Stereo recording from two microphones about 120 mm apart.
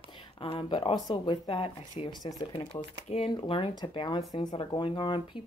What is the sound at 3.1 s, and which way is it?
Speech, 50° left (ahead or behind).